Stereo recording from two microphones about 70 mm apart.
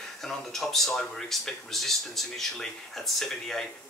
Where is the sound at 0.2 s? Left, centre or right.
Centre.